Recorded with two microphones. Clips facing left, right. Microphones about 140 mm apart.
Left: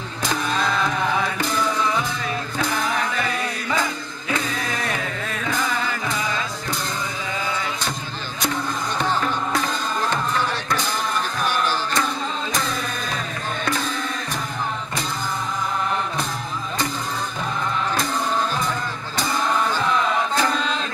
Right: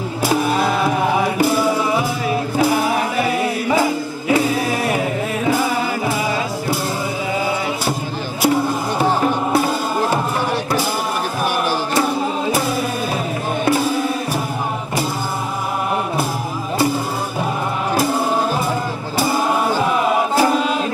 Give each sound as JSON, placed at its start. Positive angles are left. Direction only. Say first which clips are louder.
{"t": 0.2, "sound": "music", "louder": "right 6 dB", "side_deg": -10}
{"t": 1.4, "sound": "music", "louder": "right 6 dB", "side_deg": -10}
{"t": 4.3, "sound": "singing", "louder": "right 9 dB", "side_deg": -10}
{"t": 5.7, "sound": "music", "louder": "right 6 dB", "side_deg": -10}
{"t": 8.4, "sound": "music", "louder": "right 9 dB", "side_deg": -10}
{"t": 11.4, "sound": "a sound", "louder": "right 4 dB", "side_deg": -10}
{"t": 13.7, "sound": "music", "louder": "right 10 dB", "side_deg": -10}
{"t": 19.1, "sound": "music", "louder": "right 5 dB", "side_deg": -10}